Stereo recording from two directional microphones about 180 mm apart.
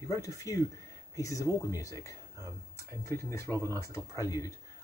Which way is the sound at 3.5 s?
20° right (ahead or behind).